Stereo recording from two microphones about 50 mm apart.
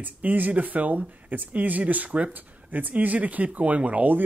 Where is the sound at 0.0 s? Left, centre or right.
Right.